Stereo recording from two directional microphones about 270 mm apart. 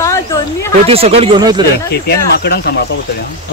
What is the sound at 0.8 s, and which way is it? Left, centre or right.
Speech, right.